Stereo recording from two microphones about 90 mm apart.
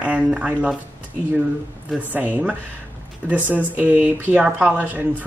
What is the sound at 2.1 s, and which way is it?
Speech, 20° right (ahead or behind).